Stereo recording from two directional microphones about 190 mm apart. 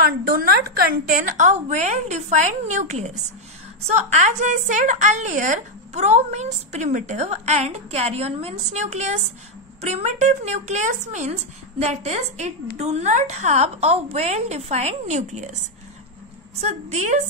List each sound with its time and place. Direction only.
0.0 s a woman's voice: 50° right (ahead or behind)
16.6 s a woman's voice: 40° right (ahead or behind)